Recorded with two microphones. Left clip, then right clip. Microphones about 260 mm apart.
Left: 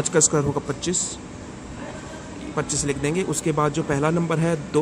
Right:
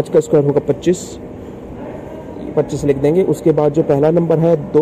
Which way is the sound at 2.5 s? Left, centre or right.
Centre.